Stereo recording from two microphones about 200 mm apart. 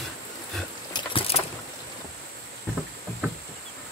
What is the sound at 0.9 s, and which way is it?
Vehicle, 30° left (ahead or behind).